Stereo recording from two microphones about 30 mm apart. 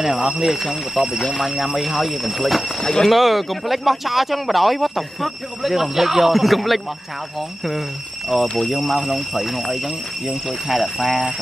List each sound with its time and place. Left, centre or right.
0.0 s speech: centre
1.9 s speech: centre
2.8 s speech: left
3.1 s speech: centre